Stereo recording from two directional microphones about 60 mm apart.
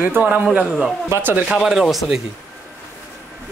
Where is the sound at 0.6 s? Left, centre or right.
Centre.